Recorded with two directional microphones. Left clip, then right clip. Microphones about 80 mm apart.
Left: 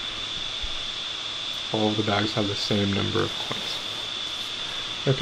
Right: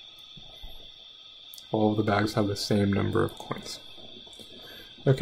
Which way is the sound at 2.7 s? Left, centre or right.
Centre.